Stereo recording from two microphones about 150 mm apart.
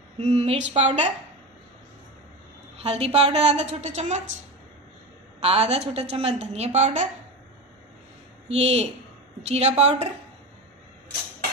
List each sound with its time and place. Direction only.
0.2 s a woman's voice: 45° right (ahead or behind)
2.8 s a woman's voice: 45° right (ahead or behind)
5.4 s a woman's voice: 45° right (ahead or behind)
8.5 s a woman's voice: 45° right (ahead or behind)